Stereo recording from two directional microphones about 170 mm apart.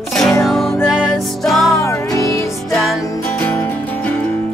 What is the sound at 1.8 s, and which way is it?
Music, 15° left (ahead or behind).